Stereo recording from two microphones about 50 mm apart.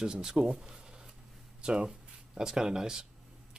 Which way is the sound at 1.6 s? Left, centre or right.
Centre.